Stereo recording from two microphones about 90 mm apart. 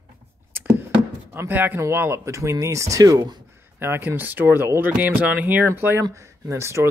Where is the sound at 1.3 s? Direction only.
25° right (ahead or behind); by 3.2 s 40° right (ahead or behind).